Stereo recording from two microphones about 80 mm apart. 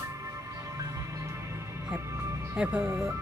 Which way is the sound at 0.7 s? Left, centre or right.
Right.